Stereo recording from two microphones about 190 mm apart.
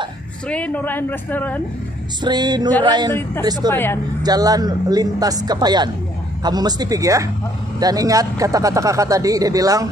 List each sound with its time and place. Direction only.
0.5 s speech: 5° left (ahead or behind)
2.2 s speech: 20° right (ahead or behind)
3.1 s speech: 10° left (ahead or behind)
4.2 s speech: 20° right (ahead or behind)